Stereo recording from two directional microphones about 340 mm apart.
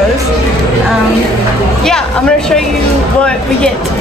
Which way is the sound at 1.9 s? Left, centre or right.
Centre.